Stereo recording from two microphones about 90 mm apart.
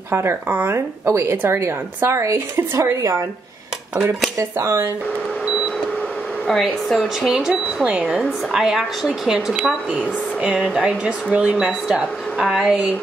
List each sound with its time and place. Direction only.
0.1 s speech: 25° right (ahead or behind)
4.4 s speech: 35° right (ahead or behind)
6.4 s speech: 5° left (ahead or behind)
7.3 s speech: 10° right (ahead or behind)